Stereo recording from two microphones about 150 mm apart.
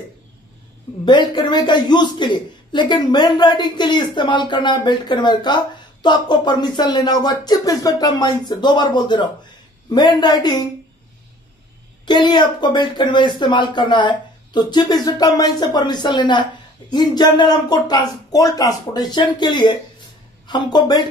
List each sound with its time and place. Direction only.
1.0 s speech: 30° left (ahead or behind)
12.1 s speech: 30° left (ahead or behind)